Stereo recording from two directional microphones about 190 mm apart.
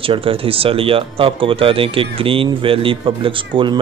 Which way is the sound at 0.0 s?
30° right (ahead or behind).